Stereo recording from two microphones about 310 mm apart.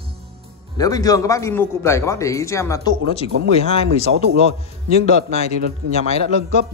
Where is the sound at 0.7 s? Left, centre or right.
Centre.